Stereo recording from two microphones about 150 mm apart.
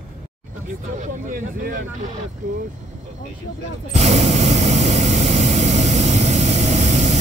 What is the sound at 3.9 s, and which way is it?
Vehicle, 50° right (ahead or behind).